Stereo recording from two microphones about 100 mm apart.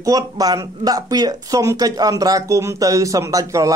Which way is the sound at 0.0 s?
40° right (ahead or behind).